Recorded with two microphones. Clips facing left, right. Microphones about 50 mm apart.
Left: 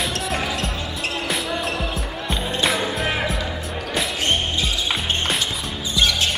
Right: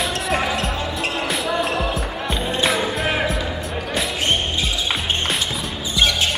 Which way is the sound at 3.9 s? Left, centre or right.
Centre.